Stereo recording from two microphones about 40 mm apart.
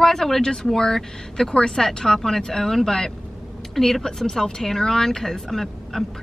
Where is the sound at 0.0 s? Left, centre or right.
Centre.